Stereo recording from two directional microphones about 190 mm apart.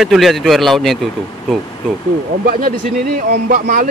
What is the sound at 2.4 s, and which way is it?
Speech, 50° right (ahead or behind).